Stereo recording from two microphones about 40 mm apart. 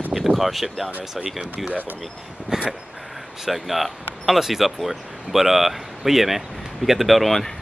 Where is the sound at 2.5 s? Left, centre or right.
Centre.